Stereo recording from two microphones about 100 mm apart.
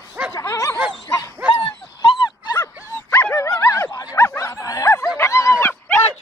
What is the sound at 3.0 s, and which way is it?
Dog, 25° left (ahead or behind).